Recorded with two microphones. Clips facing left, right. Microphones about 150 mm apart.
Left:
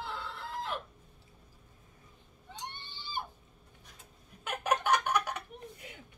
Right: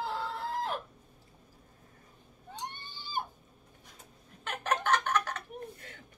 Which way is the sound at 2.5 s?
45° right (ahead or behind).